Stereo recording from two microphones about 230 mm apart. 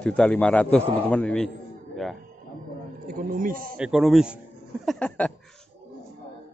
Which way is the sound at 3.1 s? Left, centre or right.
Right.